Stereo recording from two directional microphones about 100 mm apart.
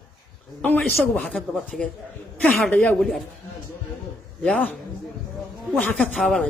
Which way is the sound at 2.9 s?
Centre (ahead or behind).